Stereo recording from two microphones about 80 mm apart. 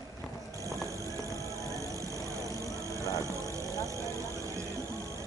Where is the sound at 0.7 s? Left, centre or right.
Right.